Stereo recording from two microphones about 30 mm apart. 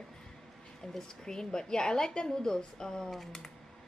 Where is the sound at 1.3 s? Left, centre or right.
Left.